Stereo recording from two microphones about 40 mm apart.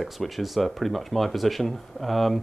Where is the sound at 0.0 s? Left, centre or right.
Centre.